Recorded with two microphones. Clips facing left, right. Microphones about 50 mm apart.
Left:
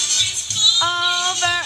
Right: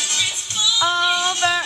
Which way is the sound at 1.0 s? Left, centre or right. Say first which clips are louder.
Right 1 dB; centre.